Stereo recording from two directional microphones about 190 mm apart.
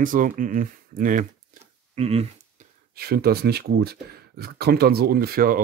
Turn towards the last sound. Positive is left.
turn(degrees=-50)  # may be behind; listen again after turning